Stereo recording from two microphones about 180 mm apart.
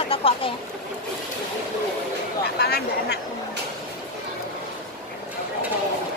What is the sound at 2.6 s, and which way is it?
Speech, 65° left (ahead or behind).